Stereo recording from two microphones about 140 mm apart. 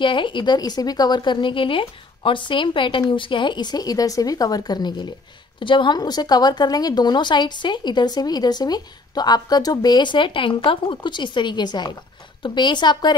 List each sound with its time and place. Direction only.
0.0 s a woman's voice: 35° left (ahead or behind)